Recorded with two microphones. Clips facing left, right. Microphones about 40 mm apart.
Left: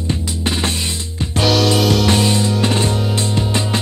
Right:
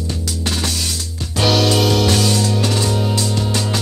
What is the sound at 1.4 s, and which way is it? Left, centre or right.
Music, centre.